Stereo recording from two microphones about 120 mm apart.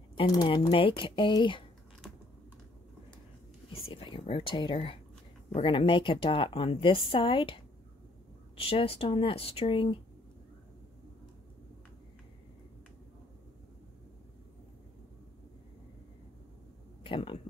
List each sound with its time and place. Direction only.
0.3 s a woman's voice: 40° left (ahead or behind)
3.7 s a woman's voice: 45° left (ahead or behind)
17.0 s speech: 45° left (ahead or behind)